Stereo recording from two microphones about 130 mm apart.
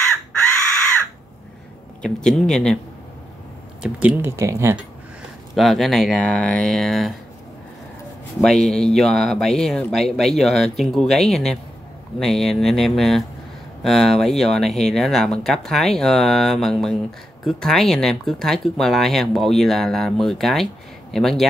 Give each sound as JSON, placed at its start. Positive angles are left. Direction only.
{"t": 2.2, "sound": "speech", "side_deg": 5}
{"t": 3.8, "sound": "speech", "side_deg": -10}
{"t": 4.4, "sound": "speech", "side_deg": -20}
{"t": 5.6, "sound": "speech", "side_deg": 0}
{"t": 8.4, "sound": "speech", "side_deg": 5}